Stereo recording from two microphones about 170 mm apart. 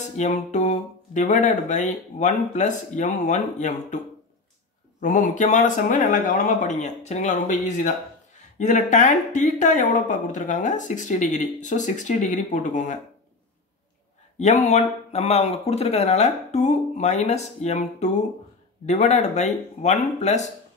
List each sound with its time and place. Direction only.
0.0 s speech: 45° left (ahead or behind)
5.0 s speech: 50° left (ahead or behind)
14.4 s speech: 40° left (ahead or behind)